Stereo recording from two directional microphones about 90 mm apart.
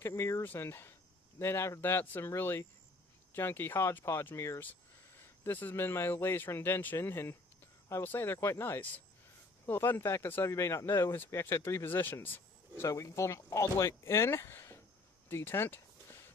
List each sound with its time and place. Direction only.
0.0 s speech: 30° left (ahead or behind)
12.8 s speech: 35° left (ahead or behind)
15.2 s a sound: 25° left (ahead or behind)